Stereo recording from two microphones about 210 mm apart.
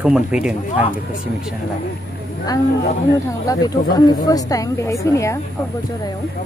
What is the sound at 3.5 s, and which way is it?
A woman's voice, 15° left (ahead or behind).